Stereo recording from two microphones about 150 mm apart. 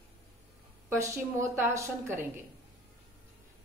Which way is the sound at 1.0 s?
15° right (ahead or behind).